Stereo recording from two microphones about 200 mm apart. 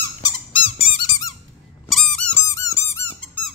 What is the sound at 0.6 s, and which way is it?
Squeak, 25° left (ahead or behind).